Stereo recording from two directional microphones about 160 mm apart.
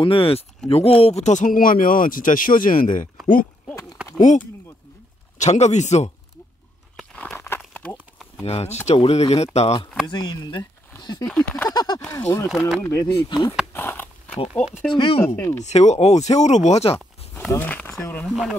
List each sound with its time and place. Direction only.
0.0 s speech: 35° left (ahead or behind); by 3.1 s 55° left (ahead or behind)
4.2 s speech: 50° left (ahead or behind)
7.0 s crumpling: 5° left (ahead or behind)
8.5 s speech: 40° left (ahead or behind)
10.0 s speech: 25° left (ahead or behind)
11.0 s a sound: 25° left (ahead or behind)
11.2 s speech: 5° left (ahead or behind)
11.7 s speech: 25° left (ahead or behind)
12.0 s speech: 15° left (ahead or behind)
13.7 s a sound: 10° left (ahead or behind)
14.9 s speech: 35° left (ahead or behind)
15.2 s speech: 15° left (ahead or behind)
15.6 s speech: 45° left (ahead or behind)
17.5 s speech: 10° left (ahead or behind)